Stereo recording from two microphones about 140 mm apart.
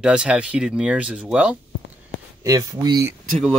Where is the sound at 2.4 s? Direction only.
25° right (ahead or behind).